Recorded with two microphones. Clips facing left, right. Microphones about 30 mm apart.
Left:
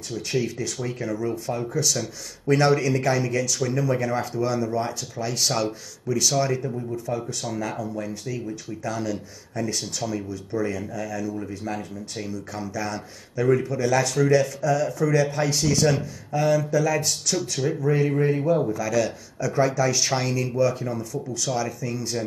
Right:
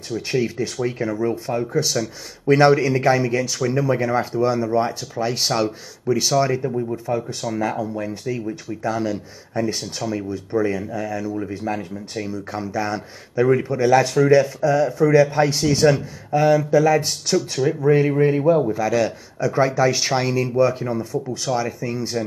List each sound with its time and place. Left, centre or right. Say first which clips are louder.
0.1 s speech: right 4 dB; right